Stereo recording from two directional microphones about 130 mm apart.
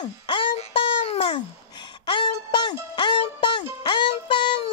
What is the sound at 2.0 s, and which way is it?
Music, 40° left (ahead or behind).